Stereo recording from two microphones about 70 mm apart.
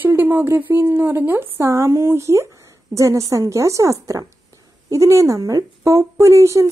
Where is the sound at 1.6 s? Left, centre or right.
Right.